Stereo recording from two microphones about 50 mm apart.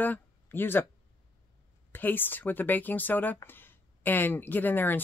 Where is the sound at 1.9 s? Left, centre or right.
Left.